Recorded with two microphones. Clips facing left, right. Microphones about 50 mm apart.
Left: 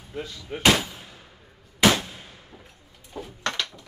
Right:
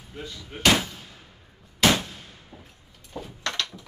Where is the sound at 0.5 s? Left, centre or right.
Centre.